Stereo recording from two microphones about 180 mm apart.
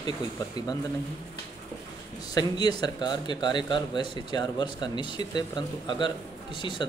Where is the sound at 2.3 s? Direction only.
20° left (ahead or behind).